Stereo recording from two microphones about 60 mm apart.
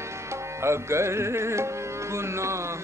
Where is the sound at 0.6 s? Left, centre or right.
Right.